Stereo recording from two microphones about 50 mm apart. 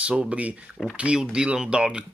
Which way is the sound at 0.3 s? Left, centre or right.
Right.